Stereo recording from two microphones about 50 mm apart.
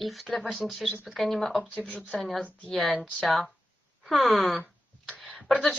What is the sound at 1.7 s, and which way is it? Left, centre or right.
Speech, left.